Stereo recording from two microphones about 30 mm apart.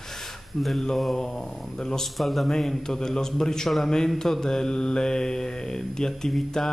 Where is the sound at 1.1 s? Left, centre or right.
Centre.